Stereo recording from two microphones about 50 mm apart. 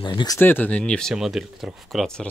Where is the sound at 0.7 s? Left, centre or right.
Left.